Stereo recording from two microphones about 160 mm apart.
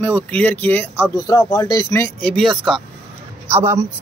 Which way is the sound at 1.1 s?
20° left (ahead or behind).